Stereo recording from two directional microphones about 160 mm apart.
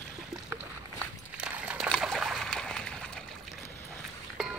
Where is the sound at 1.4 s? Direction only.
5° right (ahead or behind).